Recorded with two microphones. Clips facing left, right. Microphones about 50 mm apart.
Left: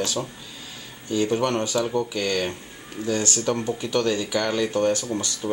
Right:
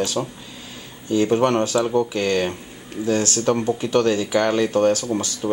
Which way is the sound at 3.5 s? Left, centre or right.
Centre.